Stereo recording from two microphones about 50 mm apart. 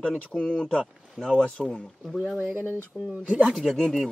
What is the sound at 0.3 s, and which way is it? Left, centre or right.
Speech, left.